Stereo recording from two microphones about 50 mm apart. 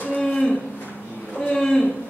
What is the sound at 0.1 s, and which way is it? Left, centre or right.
Cattle, left.